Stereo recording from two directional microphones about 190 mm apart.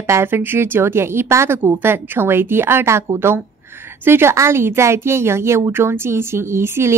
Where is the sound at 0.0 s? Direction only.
15° right (ahead or behind).